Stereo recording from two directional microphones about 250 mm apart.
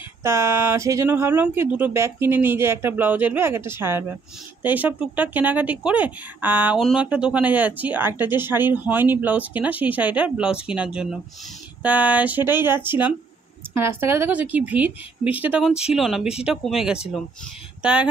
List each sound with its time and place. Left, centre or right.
0.2 s a woman's voice: centre